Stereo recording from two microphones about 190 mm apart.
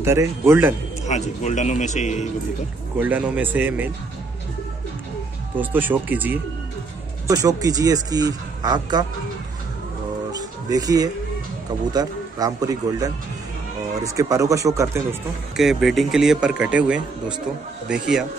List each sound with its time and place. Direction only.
0.0 s speech: 15° right (ahead or behind)
1.0 s speech: 40° left (ahead or behind)
3.0 s speech: 10° right (ahead or behind)
5.6 s a man's voice: 10° right (ahead or behind)
10.7 s a man's voice: 20° right (ahead or behind)
15.5 s speech: centre (ahead or behind)